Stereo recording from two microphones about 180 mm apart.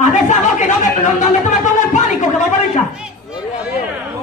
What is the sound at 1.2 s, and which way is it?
Music, 40° left (ahead or behind).